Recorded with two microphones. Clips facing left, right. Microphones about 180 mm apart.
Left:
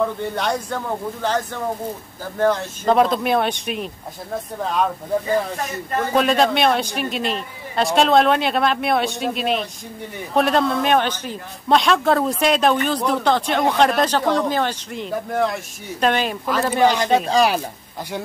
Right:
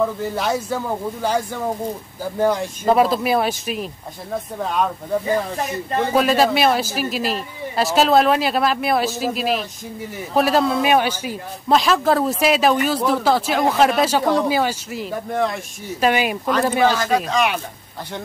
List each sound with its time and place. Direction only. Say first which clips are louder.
0.0 s a man's voice: right 1 dB; 5° right (ahead or behind)
6.1 s speech: even; 5° right (ahead or behind)
16.8 s speech: left 4 dB; 20° left (ahead or behind)
17.3 s speech: left 3 dB; 35° left (ahead or behind)